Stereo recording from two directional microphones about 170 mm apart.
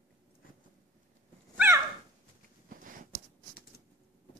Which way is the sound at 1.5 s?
15° right (ahead or behind).